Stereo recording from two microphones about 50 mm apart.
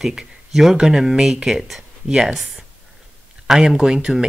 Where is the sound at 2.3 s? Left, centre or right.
Centre.